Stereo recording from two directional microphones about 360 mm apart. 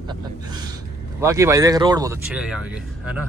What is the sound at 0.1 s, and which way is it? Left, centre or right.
Gasp, centre.